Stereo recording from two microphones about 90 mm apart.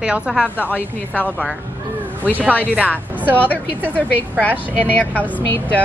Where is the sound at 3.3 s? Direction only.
20° left (ahead or behind).